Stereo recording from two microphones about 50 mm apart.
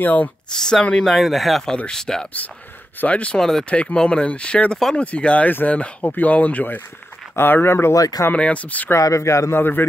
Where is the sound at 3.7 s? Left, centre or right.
Left.